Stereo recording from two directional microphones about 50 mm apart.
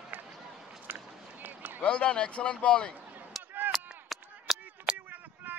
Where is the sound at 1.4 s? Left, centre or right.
Right.